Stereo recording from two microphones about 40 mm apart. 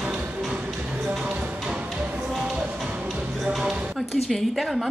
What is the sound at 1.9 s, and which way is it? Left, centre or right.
Music, right.